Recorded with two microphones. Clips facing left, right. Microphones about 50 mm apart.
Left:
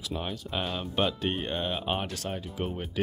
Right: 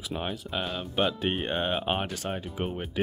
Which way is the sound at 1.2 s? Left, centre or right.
Right.